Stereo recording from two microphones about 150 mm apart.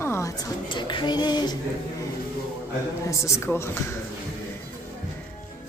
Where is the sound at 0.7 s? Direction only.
30° left (ahead or behind).